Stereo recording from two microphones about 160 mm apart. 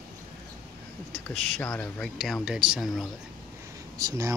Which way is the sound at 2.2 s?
5° right (ahead or behind).